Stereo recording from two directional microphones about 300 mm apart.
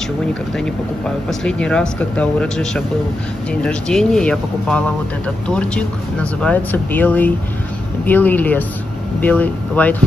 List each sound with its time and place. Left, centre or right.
1.0 s speech: centre